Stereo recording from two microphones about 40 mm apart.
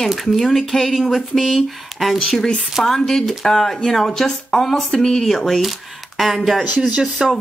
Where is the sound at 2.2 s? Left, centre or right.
Centre.